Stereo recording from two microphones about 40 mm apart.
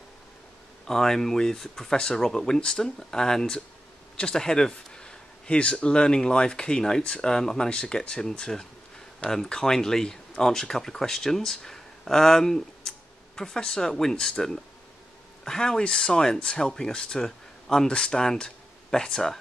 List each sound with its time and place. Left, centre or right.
0.8 s speech: centre
4.2 s a sound: centre
5.6 s speech: left